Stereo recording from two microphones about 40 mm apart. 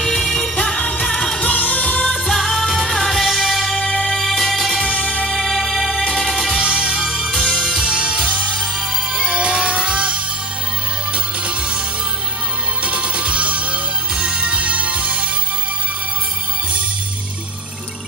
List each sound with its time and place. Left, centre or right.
0.0 s music: centre
0.7 s music: left
1.0 s music: centre
1.4 s music: left
2.2 s music: centre
3.9 s music: centre
4.2 s music: centre
4.8 s music: left
5.3 s music: centre
6.0 s music: centre
6.3 s music: centre
7.3 s music: left
7.6 s music: right
12.8 s music: right